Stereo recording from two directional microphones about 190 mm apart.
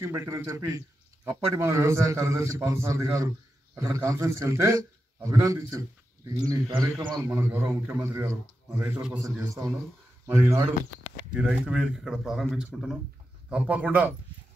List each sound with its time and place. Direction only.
0.0 s speech: 15° right (ahead or behind)
10.2 s speech: 15° right (ahead or behind)